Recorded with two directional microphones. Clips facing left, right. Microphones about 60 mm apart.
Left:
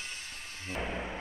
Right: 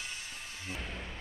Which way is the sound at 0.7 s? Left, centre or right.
Left.